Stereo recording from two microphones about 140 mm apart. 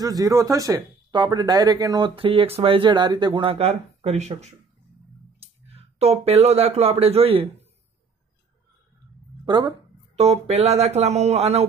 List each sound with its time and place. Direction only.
0.0 s speech: 25° right (ahead or behind); by 7.4 s 45° right (ahead or behind)
9.4 s speech: 30° right (ahead or behind)
10.1 s speech: 45° right (ahead or behind)